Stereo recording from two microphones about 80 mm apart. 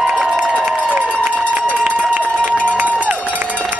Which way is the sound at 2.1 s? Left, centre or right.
Centre.